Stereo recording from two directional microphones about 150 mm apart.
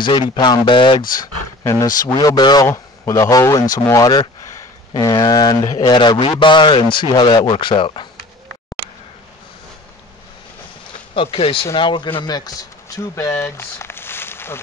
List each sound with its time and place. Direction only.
0.0 s a man's voice: 30° left (ahead or behind)
1.6 s a man's voice: 20° left (ahead or behind)
11.1 s a man's voice: 40° left (ahead or behind); by 14.6 s 15° left (ahead or behind)